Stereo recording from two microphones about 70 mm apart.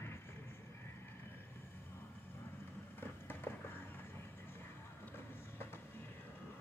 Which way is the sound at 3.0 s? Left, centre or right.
Left.